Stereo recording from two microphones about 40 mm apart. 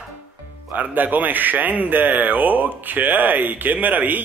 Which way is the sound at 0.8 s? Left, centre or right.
Right.